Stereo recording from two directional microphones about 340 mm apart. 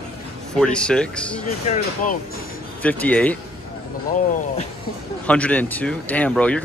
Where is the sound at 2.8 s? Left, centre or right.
Centre.